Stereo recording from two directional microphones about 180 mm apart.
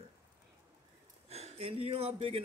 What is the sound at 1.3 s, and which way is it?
A man's voice, 35° right (ahead or behind).